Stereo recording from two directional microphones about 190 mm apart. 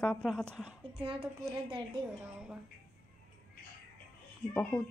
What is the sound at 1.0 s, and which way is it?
Speech, 30° right (ahead or behind).